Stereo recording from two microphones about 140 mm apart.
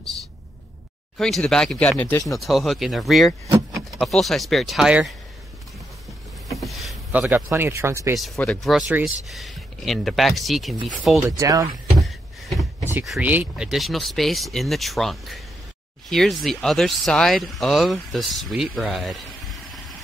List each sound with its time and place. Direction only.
1.1 s speech: 5° left (ahead or behind)
3.4 s vehicle: 25° right (ahead or behind)
4.0 s speech: centre (ahead or behind)
6.5 s vehicle: centre (ahead or behind)
7.1 s a man's voice: 10° right (ahead or behind)
8.4 s speech: 5° left (ahead or behind)
11.2 s speech: 25° right (ahead or behind)
12.0 s a sound: centre (ahead or behind)
13.2 s speech: 10° right (ahead or behind)